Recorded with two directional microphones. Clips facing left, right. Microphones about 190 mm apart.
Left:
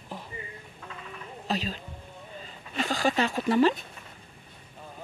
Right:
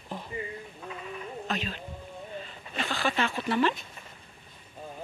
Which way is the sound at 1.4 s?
35° left (ahead or behind).